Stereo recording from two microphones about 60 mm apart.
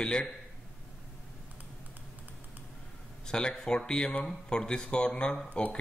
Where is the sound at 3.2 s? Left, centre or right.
Centre.